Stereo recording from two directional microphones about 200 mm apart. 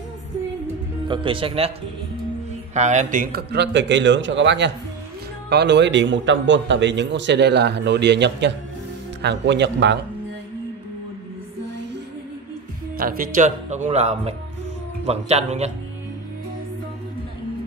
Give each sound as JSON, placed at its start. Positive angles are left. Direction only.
{"t": 1.0, "sound": "speech", "side_deg": -25}
{"t": 2.7, "sound": "a man's voice", "side_deg": -35}
{"t": 12.9, "sound": "speech", "side_deg": -45}